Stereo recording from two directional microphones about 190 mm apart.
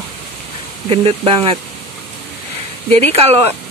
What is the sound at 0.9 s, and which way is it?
Speech, 30° right (ahead or behind).